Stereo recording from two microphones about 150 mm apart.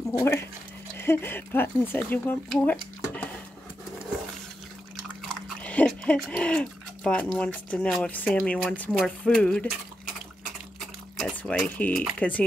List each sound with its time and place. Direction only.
0.2 s speech: 15° left (ahead or behind)
2.6 s a sound: 10° left (ahead or behind)
5.6 s speech: 10° left (ahead or behind)
10.8 s speech: centre (ahead or behind)